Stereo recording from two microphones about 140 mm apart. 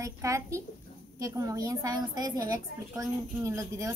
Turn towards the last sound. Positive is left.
turn(degrees=-25)  # may be behind; listen again after turning